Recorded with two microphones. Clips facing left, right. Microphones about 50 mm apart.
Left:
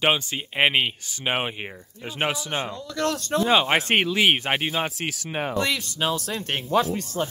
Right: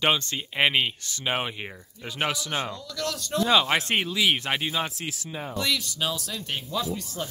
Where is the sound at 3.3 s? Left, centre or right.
Left.